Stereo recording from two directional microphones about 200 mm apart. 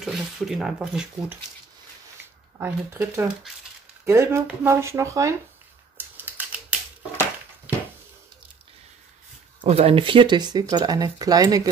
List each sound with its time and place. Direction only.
0.0 s speech: centre (ahead or behind)
2.6 s speech: 10° right (ahead or behind)
5.9 s typewriter: 10° right (ahead or behind)
9.6 s speech: 30° right (ahead or behind)